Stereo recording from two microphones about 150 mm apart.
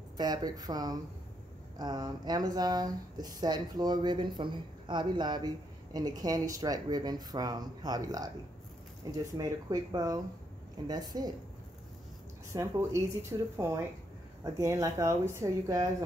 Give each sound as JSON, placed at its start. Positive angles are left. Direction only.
{"t": 0.2, "sound": "speech", "side_deg": -25}
{"t": 12.5, "sound": "speech", "side_deg": -20}